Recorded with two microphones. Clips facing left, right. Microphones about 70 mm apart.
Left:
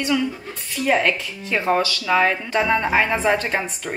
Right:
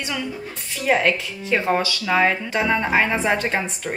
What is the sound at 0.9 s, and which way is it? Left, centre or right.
Speech, centre.